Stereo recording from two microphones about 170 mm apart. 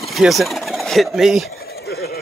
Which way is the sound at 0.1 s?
Centre (ahead or behind).